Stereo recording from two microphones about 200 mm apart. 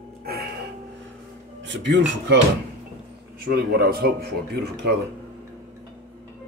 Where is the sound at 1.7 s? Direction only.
60° right (ahead or behind).